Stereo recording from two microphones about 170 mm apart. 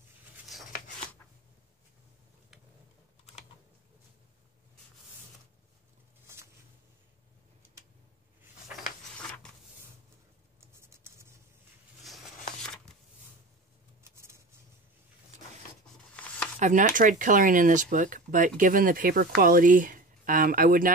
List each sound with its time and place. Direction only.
6.2 s a sound: 15° right (ahead or behind)
10.7 s scratch: 15° right (ahead or behind)
14.0 s vehicle: 15° right (ahead or behind)
16.5 s speech: 45° right (ahead or behind)